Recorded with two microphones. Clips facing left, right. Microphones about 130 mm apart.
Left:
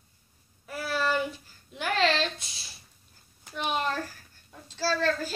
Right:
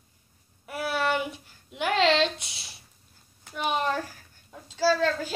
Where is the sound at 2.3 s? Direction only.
70° right (ahead or behind).